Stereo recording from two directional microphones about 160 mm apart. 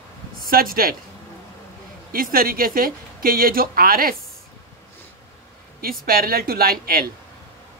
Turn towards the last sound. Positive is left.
turn(degrees=-70)  # may be behind; listen again after turning